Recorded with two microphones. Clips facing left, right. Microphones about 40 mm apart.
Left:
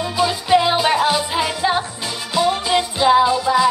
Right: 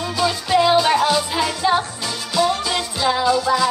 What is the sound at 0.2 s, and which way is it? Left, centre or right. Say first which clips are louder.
Music: left 1 dB; centre.